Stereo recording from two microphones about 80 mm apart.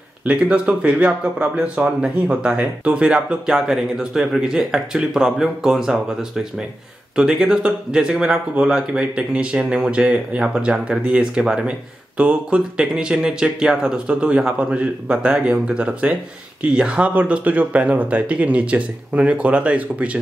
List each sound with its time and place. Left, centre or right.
0.2 s speech: centre